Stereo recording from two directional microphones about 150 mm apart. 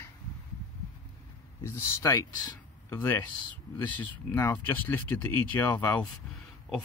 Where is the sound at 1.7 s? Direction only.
20° left (ahead or behind).